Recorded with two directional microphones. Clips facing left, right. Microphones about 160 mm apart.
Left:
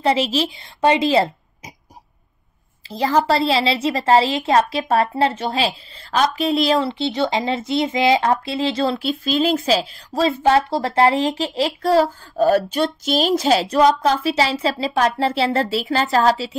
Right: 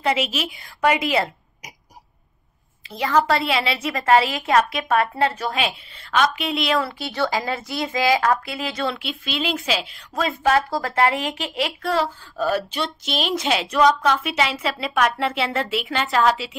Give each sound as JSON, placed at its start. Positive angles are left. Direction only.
{"t": 0.0, "sound": "a woman's voice", "side_deg": 30}
{"t": 3.0, "sound": "a woman's voice", "side_deg": 35}